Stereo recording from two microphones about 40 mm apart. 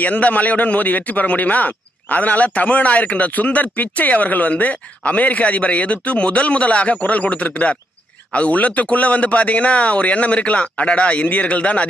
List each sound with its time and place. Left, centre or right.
0.0 s a man's voice: left